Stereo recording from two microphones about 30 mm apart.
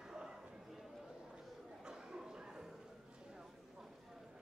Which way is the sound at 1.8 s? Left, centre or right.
Right.